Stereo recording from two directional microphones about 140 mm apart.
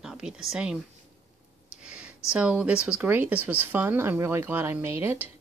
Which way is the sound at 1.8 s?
5° right (ahead or behind).